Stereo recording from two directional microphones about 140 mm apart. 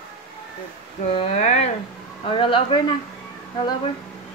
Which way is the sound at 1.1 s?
55° left (ahead or behind).